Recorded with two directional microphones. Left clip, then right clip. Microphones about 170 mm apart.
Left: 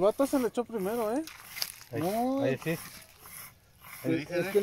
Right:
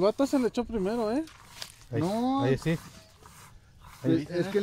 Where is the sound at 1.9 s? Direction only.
35° right (ahead or behind).